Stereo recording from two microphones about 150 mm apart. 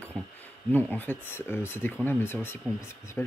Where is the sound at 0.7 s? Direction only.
10° left (ahead or behind).